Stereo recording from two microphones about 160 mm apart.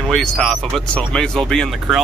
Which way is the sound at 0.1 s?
5° left (ahead or behind).